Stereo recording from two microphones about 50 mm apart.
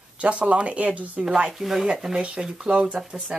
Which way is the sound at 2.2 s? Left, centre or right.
Centre.